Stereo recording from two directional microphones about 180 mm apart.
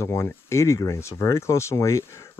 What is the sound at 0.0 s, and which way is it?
Speech, 15° left (ahead or behind).